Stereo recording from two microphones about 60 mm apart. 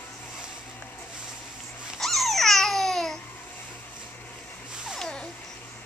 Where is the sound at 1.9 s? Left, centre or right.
Centre.